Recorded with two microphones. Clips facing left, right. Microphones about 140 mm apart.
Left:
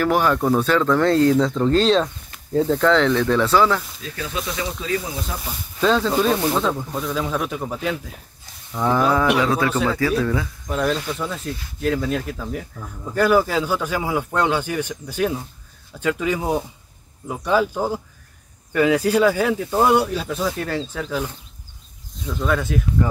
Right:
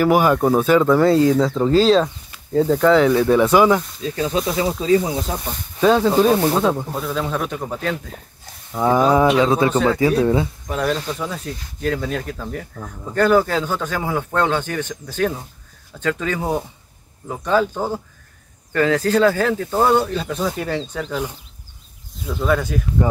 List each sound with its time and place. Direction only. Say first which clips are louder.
0.0 s speech: right 3 dB; 10° right (ahead or behind)
4.0 s speech: right 8 dB; 30° right (ahead or behind)
5.8 s speech: right 4 dB; 15° right (ahead or behind)
6.9 s speech: right 1 dB; centre (ahead or behind)
8.8 s speech: right 3 dB; 15° right (ahead or behind)
10.7 s speech: left 1 dB; centre (ahead or behind)
12.7 s speech: right 1 dB; 10° right (ahead or behind)
13.1 s speech: right 1 dB; 5° left (ahead or behind)
22.2 s speech: right 3 dB; 5° right (ahead or behind)